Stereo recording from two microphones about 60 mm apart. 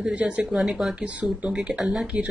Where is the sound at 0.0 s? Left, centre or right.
Centre.